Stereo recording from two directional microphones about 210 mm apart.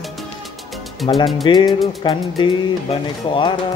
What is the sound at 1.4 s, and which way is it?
Speech, 20° left (ahead or behind).